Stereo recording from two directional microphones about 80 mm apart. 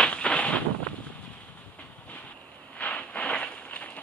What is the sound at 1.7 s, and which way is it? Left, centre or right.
Train, centre.